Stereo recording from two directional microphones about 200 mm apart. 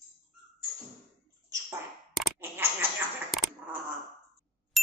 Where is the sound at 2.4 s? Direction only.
10° right (ahead or behind).